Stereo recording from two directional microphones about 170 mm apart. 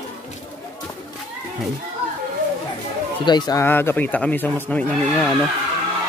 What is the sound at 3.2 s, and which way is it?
Carnatic music, 25° left (ahead or behind).